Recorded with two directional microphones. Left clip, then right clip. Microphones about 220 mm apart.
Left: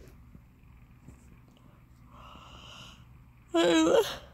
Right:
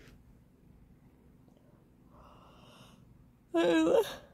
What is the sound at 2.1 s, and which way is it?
Snort, 15° left (ahead or behind).